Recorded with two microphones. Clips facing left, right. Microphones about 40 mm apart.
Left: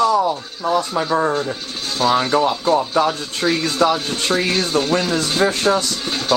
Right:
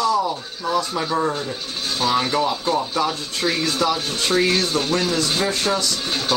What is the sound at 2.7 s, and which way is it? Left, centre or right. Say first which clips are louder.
Speech: left 5 dB; centre.